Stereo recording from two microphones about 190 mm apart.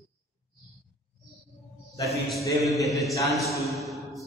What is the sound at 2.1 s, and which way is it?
A man's voice, centre (ahead or behind).